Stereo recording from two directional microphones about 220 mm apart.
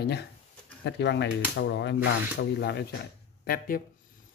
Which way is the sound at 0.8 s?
50° left (ahead or behind).